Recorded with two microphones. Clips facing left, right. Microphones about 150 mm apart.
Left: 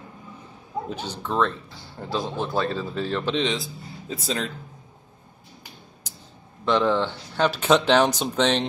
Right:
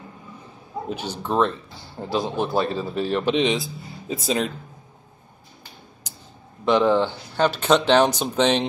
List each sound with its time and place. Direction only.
0.8 s a man's voice: 15° right (ahead or behind)
6.6 s speech: 10° right (ahead or behind)